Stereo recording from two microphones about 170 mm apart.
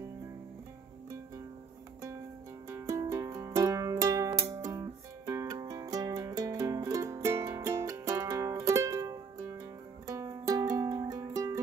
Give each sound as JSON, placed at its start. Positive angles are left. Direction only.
{"t": 2.7, "sound": "music", "side_deg": -20}